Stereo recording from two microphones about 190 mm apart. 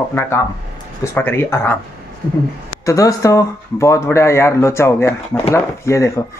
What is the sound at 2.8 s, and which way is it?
Speech, 15° left (ahead or behind).